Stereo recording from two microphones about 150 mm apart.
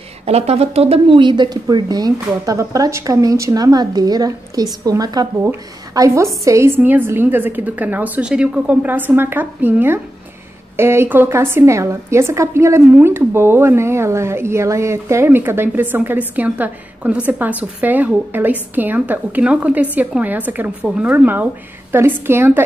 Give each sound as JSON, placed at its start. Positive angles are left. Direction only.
{"t": 0.2, "sound": "a woman's voice", "side_deg": -45}